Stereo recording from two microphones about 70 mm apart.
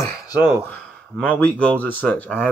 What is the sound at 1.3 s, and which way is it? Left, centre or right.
Speech, centre.